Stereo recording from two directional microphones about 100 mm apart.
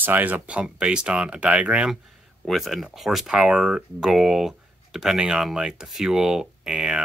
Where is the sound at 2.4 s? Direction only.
Centre (ahead or behind).